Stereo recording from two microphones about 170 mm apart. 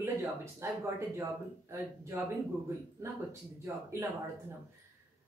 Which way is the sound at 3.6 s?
15° right (ahead or behind).